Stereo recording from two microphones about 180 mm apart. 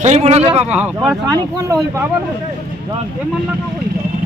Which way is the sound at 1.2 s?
20° right (ahead or behind).